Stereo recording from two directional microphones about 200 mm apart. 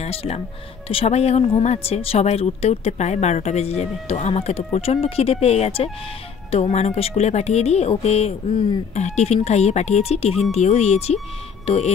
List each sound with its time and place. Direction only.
0.0 s speech: 30° left (ahead or behind)